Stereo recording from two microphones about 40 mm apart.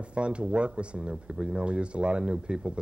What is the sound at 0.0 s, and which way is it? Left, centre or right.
Speech, right.